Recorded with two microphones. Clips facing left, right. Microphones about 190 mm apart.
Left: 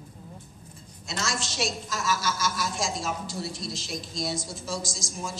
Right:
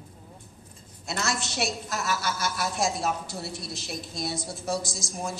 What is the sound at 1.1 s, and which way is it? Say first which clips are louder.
A woman's voice: right 2 dB; 60° right (ahead or behind).